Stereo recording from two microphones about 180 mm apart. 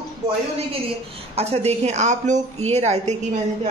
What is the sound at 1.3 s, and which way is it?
A woman's voice, 35° right (ahead or behind).